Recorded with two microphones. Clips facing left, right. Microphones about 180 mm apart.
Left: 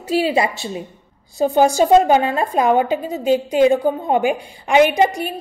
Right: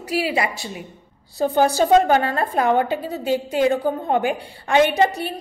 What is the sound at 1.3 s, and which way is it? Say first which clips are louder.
A woman's voice: left 3 dB; 15° left (ahead or behind).